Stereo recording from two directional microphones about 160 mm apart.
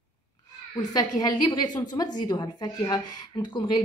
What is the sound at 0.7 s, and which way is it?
Speech, 25° left (ahead or behind).